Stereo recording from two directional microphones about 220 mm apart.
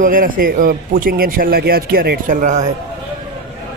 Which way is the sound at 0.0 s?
40° right (ahead or behind).